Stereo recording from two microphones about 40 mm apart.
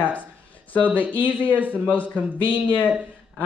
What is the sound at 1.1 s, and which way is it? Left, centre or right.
Speech, right.